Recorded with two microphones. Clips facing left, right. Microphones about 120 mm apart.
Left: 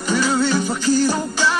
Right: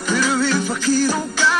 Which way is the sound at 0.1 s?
20° left (ahead or behind).